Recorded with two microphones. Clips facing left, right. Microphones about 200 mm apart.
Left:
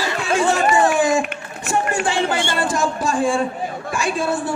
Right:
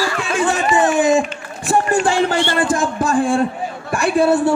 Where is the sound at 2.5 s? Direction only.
50° right (ahead or behind).